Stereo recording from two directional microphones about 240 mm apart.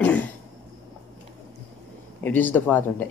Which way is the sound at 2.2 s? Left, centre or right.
Centre.